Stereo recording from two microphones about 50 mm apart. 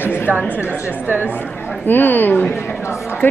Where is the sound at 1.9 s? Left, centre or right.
Left.